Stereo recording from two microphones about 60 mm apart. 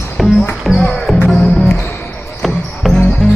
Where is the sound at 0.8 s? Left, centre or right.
Centre.